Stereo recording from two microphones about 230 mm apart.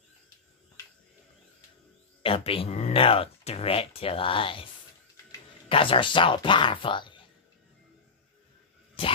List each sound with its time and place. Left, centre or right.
2.2 s speech: left
5.7 s speech: left